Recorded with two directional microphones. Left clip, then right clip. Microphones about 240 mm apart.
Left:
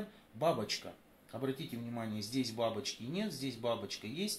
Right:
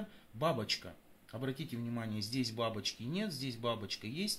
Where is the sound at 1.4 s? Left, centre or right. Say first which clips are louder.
Left 2 dB; right.